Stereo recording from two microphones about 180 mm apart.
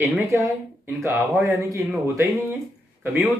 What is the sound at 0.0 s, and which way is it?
Speech, 15° right (ahead or behind).